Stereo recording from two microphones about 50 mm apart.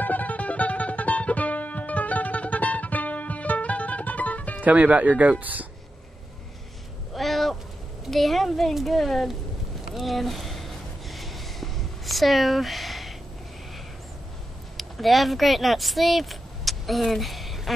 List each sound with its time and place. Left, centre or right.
0.0 s music: left
4.6 s speech: right
7.2 s a sound: centre
8.0 s a woman's voice: centre
9.9 s a sound: centre
14.8 s speech: centre